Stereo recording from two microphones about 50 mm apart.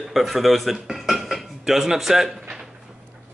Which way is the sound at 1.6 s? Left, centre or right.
Centre.